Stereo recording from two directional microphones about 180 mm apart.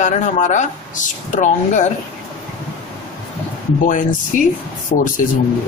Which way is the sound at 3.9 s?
45° left (ahead or behind).